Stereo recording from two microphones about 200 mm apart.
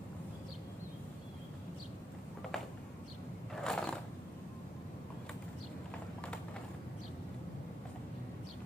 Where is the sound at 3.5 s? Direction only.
5° left (ahead or behind).